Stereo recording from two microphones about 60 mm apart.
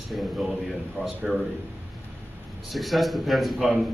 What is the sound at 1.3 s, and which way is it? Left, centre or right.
Speech, centre.